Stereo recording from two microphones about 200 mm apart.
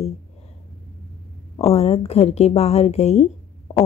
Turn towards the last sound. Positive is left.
turn(degrees=35)  # may be behind; listen again after turning